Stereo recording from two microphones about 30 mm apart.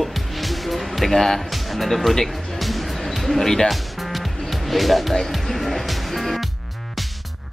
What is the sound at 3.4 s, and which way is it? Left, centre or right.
Speech, centre.